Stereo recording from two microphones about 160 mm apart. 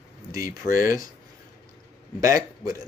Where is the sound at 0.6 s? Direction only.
55° left (ahead or behind).